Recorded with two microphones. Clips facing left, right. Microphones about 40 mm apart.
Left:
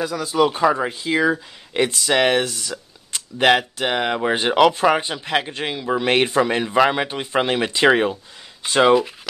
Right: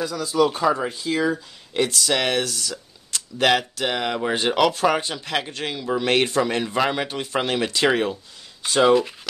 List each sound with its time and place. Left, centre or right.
0.0 s speech: left
8.9 s speech: centre